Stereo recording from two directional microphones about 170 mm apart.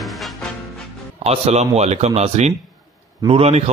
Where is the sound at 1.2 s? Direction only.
40° right (ahead or behind).